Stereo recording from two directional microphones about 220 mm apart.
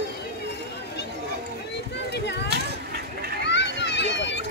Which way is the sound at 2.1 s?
50° left (ahead or behind).